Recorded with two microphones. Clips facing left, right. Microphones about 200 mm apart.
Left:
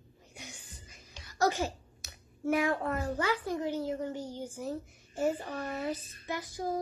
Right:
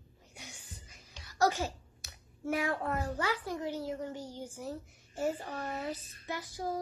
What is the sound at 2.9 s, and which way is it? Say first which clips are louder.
A woman's voice: left 2 dB; 25° left (ahead or behind).